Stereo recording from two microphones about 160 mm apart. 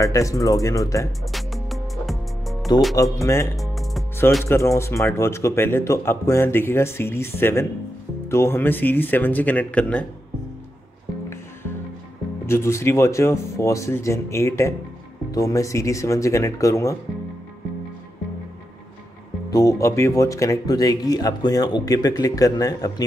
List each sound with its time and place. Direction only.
0.0 s speech: 20° left (ahead or behind)
1.2 s music: centre (ahead or behind)
3.0 s speech: 20° left (ahead or behind)
3.5 s music: centre (ahead or behind)
4.5 s speech: 15° left (ahead or behind)
12.4 s speech: 15° left (ahead or behind)
19.5 s speech: 20° left (ahead or behind)